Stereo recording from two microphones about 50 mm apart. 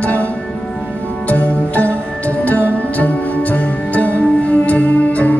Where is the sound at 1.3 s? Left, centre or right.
Left.